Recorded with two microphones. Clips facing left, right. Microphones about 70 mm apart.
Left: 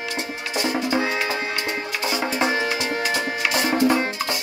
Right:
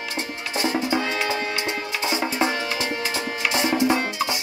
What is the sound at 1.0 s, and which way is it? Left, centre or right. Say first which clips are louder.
Music: left 1 dB; left.